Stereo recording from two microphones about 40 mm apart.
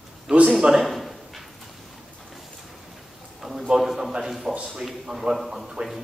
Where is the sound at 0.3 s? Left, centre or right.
Right.